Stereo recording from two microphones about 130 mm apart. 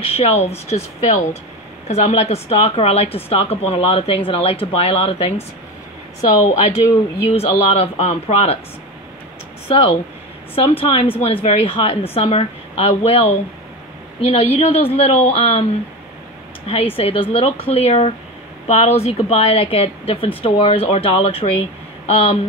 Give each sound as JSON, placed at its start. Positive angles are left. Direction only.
{"t": 0.0, "sound": "a woman's voice", "side_deg": 50}
{"t": 7.2, "sound": "a woman's voice", "side_deg": 50}
{"t": 9.7, "sound": "a woman's voice", "side_deg": 45}
{"t": 16.6, "sound": "a woman's voice", "side_deg": 50}